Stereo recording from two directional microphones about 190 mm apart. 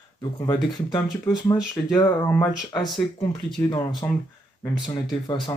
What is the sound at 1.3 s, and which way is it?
Speech, 20° left (ahead or behind).